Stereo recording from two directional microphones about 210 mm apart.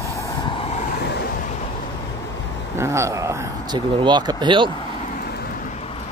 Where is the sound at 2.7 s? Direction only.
15° right (ahead or behind).